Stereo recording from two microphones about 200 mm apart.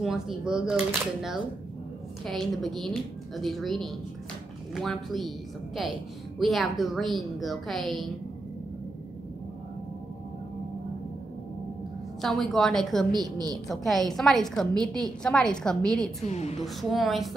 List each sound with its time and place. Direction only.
0.0 s speech: centre (ahead or behind)
2.2 s speech: centre (ahead or behind)
12.2 s speech: centre (ahead or behind)
16.3 s a woman's voice: 30° left (ahead or behind)
16.6 s speech: centre (ahead or behind)